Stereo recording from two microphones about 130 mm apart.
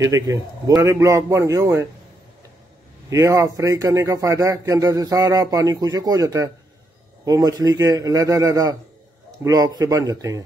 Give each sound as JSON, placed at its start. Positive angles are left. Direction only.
{"t": 0.0, "sound": "a man's voice", "side_deg": -25}
{"t": 3.1, "sound": "a man's voice", "side_deg": -25}